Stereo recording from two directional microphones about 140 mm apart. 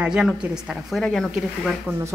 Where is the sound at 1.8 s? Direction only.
20° right (ahead or behind).